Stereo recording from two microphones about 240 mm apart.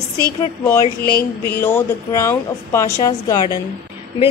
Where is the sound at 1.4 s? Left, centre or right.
Centre.